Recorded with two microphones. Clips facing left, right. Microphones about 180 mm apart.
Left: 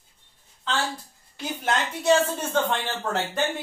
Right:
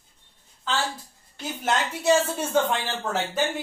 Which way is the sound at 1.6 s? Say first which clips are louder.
Right 1 dB; 10° right (ahead or behind).